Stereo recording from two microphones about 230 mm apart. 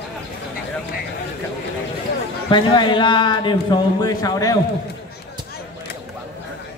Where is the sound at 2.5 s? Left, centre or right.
Centre.